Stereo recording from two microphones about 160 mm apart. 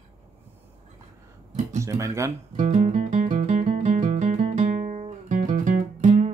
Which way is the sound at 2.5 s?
50° right (ahead or behind).